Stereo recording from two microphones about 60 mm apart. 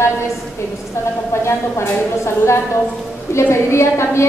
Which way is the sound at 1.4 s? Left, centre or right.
Left.